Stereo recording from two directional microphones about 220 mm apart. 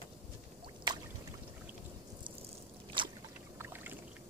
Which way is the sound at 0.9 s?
20° right (ahead or behind).